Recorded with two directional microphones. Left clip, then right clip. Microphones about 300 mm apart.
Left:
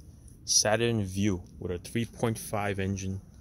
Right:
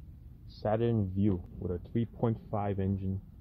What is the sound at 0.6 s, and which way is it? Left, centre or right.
Speech, centre.